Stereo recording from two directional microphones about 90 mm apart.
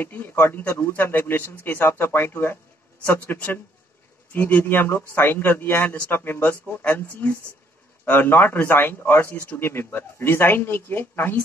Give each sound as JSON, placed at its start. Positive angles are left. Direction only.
{"t": 0.0, "sound": "a man's voice", "side_deg": 20}